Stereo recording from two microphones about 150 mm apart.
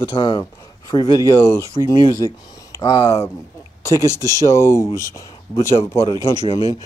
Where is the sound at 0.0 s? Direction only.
35° left (ahead or behind).